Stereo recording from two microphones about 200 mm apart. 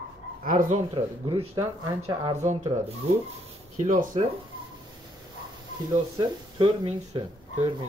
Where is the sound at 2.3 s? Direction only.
35° right (ahead or behind).